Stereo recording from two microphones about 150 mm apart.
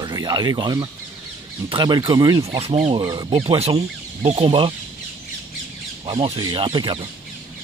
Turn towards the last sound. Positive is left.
turn(degrees=-30)  # may be behind; listen again after turning